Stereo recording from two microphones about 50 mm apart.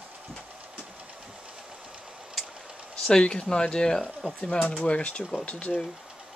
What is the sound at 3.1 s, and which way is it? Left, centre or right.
Speech, centre.